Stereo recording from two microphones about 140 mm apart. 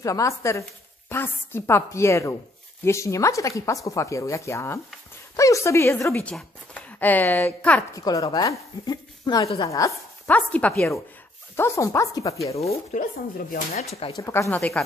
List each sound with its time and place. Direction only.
0.0 s a woman's voice: 25° left (ahead or behind)
6.2 s speech: 10° left (ahead or behind)
7.9 s a woman's voice: 25° left (ahead or behind)
10.3 s a woman's voice: 10° left (ahead or behind)
12.5 s speech: 50° left (ahead or behind)
14.1 s a woman's voice: 20° left (ahead or behind)
14.5 s a woman's voice: 5° left (ahead or behind)